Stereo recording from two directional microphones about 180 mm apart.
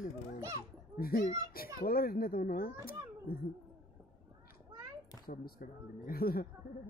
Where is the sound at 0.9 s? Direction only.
55° left (ahead or behind).